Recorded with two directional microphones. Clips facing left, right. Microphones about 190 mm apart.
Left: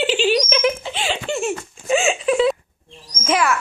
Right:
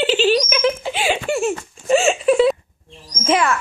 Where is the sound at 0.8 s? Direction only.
5° right (ahead or behind).